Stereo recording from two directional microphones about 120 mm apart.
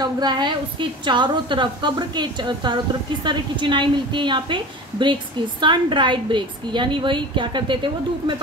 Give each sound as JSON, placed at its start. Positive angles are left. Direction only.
{"t": 0.0, "sound": "a woman's voice", "side_deg": -35}